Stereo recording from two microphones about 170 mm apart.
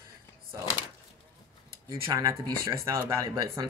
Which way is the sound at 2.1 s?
20° right (ahead or behind).